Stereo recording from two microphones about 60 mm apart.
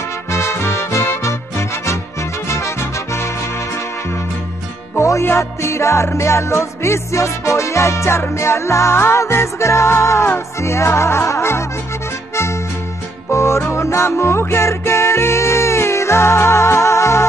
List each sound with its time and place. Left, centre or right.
0.3 s music: left
4.9 s music: left
5.2 s music: left
13.3 s music: left